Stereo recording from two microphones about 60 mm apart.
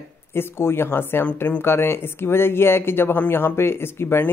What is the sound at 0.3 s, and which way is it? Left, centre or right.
Speech, left.